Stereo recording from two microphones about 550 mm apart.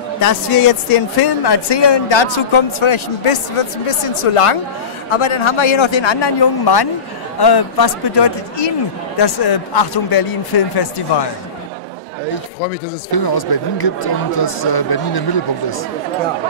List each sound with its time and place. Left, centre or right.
0.2 s speech: left
1.2 s a man's voice: left
13.1 s speech: left